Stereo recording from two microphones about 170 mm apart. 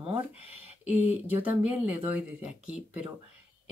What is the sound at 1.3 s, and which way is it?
Speech, 10° right (ahead or behind).